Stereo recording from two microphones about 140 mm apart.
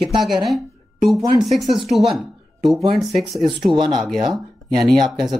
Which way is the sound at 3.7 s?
35° right (ahead or behind).